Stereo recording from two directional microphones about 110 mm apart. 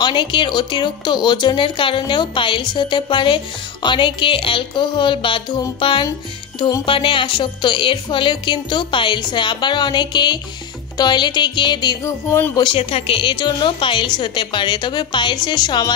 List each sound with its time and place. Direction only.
0.0 s speech: 45° left (ahead or behind)
12.0 s speech: 20° left (ahead or behind)
12.7 s speech: 60° left (ahead or behind); by 15.9 s 40° left (ahead or behind)